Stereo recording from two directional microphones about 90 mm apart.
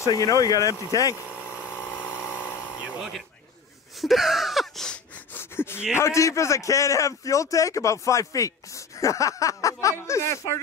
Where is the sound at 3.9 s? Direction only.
Centre (ahead or behind).